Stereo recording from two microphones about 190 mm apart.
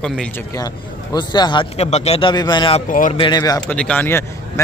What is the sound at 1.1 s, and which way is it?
A man's voice, 25° left (ahead or behind).